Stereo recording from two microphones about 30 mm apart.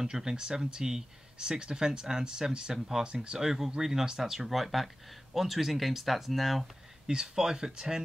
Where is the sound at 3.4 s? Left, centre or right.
Centre.